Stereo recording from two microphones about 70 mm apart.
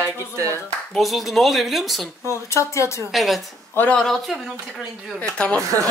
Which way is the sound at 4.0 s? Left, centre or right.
Centre.